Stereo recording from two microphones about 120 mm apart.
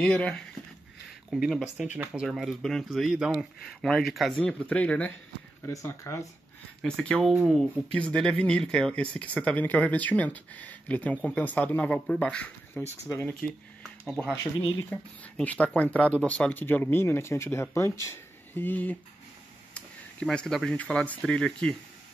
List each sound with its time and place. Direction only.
0.0 s speech: 10° left (ahead or behind)
5.7 s speech: 25° left (ahead or behind)
6.8 s speech: 5° left (ahead or behind)
14.9 s speech: 15° left (ahead or behind)